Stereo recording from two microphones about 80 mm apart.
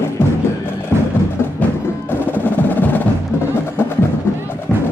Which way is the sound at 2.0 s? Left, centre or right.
Left.